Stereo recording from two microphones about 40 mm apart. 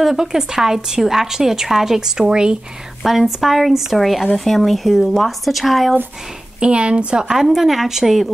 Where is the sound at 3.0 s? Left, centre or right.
Centre.